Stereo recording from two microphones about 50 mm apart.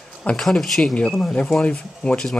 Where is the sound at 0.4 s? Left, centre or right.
Centre.